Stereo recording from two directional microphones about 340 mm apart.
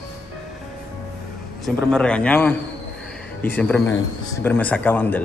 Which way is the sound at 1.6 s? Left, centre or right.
Centre.